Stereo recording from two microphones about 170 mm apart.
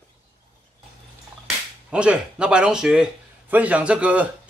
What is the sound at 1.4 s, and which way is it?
Speech, 5° right (ahead or behind).